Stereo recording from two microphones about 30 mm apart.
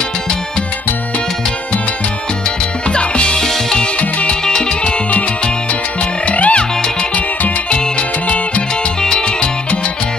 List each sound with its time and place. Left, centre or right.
2.9 s music: left
3.3 s music: centre
4.3 s music: left
6.2 s music: left
9.0 s music: left